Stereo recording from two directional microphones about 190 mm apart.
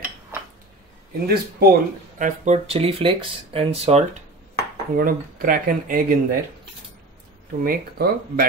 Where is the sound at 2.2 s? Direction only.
35° right (ahead or behind).